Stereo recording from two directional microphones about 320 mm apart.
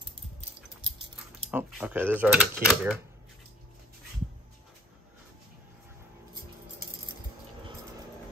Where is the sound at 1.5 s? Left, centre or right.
Centre.